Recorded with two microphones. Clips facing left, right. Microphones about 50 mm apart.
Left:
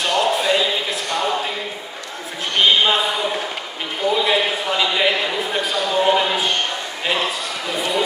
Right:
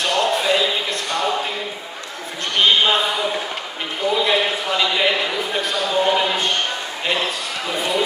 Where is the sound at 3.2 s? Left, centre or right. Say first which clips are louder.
Even; centre.